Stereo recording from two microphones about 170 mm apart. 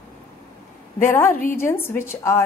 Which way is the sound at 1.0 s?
15° left (ahead or behind).